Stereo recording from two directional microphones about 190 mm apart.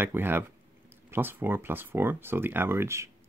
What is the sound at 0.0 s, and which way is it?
Speech, 10° right (ahead or behind).